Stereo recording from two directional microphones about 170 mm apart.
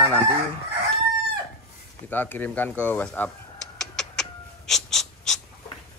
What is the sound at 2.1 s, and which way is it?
Speech, 10° left (ahead or behind).